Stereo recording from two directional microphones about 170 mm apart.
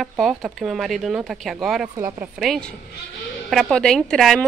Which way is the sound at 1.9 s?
15° right (ahead or behind).